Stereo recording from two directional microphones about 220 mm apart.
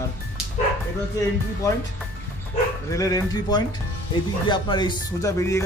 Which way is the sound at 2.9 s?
15° left (ahead or behind).